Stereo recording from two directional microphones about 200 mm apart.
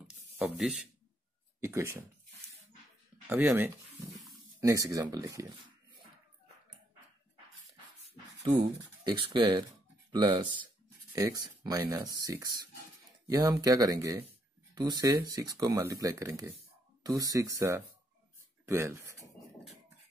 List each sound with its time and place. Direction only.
0.4 s speech: centre (ahead or behind)
1.6 s speech: 15° right (ahead or behind)
3.3 s speech: 10° right (ahead or behind)
8.4 s speech: 20° right (ahead or behind)